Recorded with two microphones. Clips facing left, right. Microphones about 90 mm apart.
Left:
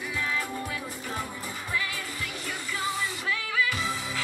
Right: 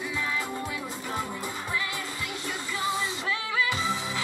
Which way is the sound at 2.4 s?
20° right (ahead or behind).